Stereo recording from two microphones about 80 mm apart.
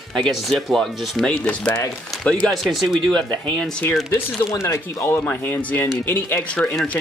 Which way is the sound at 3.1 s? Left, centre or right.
Centre.